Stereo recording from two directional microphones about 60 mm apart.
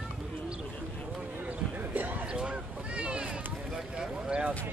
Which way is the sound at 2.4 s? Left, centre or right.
Centre.